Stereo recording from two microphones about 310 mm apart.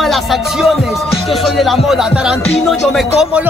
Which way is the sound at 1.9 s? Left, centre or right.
Centre.